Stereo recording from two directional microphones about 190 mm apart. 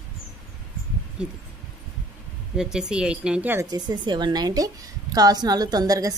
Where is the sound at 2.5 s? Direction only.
5° right (ahead or behind); by 6.1 s 20° right (ahead or behind).